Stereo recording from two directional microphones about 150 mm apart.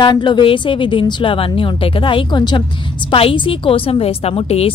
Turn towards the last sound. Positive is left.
turn(degrees=40)  # may be behind; listen again after turning